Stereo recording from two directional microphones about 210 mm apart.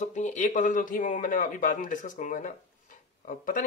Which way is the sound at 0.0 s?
35° left (ahead or behind).